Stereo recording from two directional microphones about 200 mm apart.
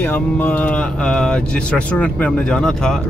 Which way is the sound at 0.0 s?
10° left (ahead or behind).